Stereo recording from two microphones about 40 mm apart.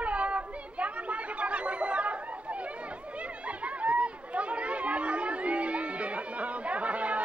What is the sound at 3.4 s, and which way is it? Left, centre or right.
Chatter, right.